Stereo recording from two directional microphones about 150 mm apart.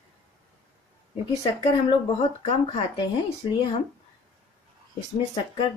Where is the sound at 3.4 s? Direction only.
30° left (ahead or behind).